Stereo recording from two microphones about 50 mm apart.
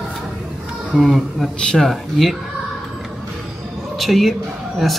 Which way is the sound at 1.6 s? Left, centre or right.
Centre.